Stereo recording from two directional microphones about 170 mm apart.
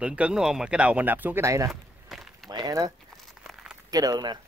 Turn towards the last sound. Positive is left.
turn(degrees=-25)  # may be behind; listen again after turning